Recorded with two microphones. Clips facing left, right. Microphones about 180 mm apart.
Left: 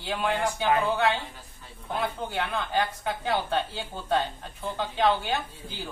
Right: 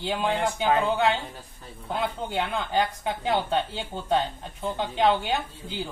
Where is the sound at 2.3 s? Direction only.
20° right (ahead or behind).